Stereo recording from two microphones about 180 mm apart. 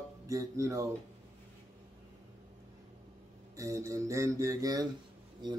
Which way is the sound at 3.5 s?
15° right (ahead or behind).